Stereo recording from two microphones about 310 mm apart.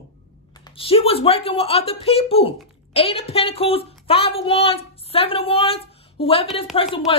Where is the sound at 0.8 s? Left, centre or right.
Centre.